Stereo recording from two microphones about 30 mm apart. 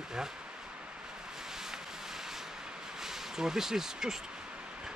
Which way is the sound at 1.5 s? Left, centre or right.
Centre.